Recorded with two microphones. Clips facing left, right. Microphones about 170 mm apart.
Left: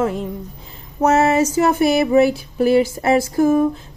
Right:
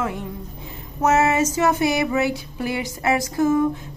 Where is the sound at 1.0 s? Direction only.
35° left (ahead or behind).